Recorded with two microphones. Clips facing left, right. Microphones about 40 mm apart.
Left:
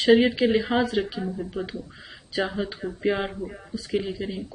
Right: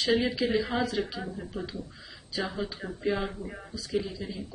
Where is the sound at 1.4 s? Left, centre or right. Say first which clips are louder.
Left 5 dB; left.